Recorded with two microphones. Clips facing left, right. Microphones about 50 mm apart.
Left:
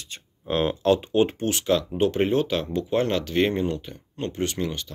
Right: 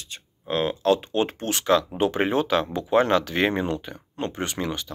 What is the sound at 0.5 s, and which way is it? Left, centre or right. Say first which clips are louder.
Speech: even; left.